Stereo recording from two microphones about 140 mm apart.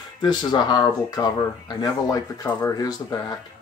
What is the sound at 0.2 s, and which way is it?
Speech, 30° left (ahead or behind).